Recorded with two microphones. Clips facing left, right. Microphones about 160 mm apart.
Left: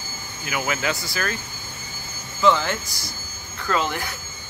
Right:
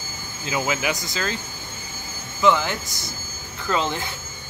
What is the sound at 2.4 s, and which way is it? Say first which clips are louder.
Speech: even; 15° right (ahead or behind).